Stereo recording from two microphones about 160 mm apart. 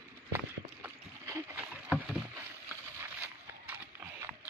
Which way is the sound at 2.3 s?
15° right (ahead or behind).